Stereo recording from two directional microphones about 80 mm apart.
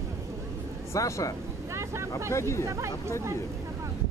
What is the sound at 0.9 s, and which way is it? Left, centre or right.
Speech, left.